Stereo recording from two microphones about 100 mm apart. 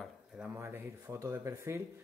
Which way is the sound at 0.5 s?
25° right (ahead or behind).